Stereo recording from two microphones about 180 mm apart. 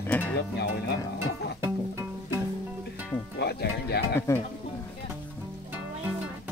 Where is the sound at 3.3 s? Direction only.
65° left (ahead or behind).